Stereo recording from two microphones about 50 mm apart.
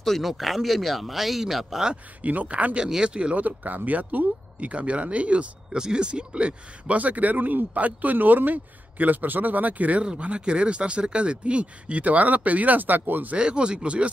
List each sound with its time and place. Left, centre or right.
0.0 s speech: centre
2.2 s speech: right
2.8 s speech: centre
3.4 s speech: right
13.4 s speech: centre